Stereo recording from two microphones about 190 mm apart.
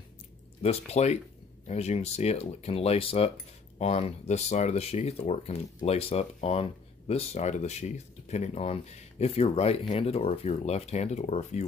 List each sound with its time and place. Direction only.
0.6 s speech: 35° left (ahead or behind)